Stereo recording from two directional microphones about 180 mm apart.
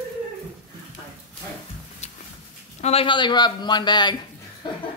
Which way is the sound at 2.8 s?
30° left (ahead or behind).